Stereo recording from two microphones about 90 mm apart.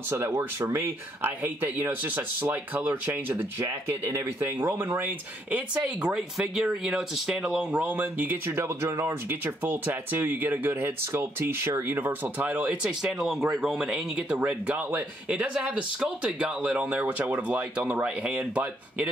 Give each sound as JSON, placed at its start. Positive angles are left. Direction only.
{"t": 0.1, "sound": "speech", "side_deg": -30}
{"t": 1.2, "sound": "speech", "side_deg": -25}
{"t": 6.1, "sound": "speech", "side_deg": -5}